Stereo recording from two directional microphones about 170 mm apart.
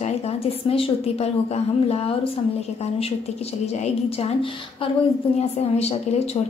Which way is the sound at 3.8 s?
40° left (ahead or behind).